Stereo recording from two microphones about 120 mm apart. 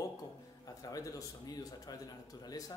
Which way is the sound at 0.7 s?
30° left (ahead or behind).